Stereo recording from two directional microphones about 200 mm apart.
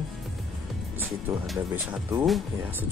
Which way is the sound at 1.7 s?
10° right (ahead or behind).